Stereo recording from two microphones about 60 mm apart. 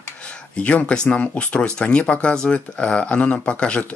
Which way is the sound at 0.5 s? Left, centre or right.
Centre.